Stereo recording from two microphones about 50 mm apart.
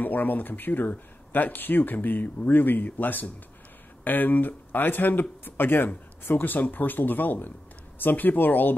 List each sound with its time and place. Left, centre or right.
0.0 s speech: left